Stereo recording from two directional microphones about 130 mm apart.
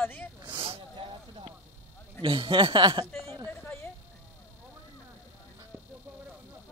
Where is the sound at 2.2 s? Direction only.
40° right (ahead or behind).